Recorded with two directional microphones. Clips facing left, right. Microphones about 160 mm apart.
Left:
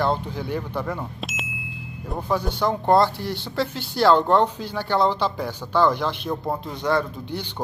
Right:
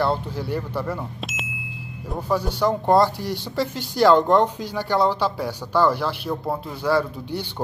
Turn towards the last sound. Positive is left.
turn(degrees=-5)  # may be behind; listen again after turning